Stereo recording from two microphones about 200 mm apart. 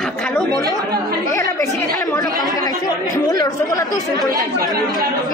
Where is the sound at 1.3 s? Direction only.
15° left (ahead or behind).